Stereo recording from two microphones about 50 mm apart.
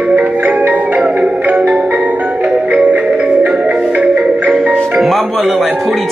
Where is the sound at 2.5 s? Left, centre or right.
Centre.